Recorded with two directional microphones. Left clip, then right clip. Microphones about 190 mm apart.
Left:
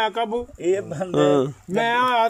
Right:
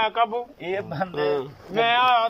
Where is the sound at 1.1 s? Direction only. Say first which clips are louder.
Left 8 dB; 70° left (ahead or behind).